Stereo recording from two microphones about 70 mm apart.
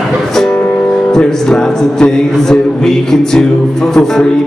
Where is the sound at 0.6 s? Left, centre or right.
Left.